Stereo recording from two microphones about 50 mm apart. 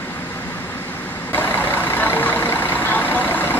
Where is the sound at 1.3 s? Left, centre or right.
Left.